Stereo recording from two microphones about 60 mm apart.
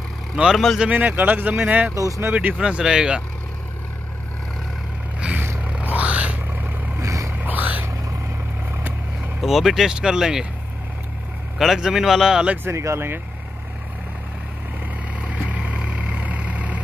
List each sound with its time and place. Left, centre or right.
0.4 s speech: right
2.0 s speech: right
2.3 s speech: centre
5.2 s a sound: centre
5.6 s music: right
7.0 s vehicle: right
7.3 s a sound: right
9.4 s speech: centre
11.5 s speech: centre
12.6 s speech: right
15.1 s vehicle: right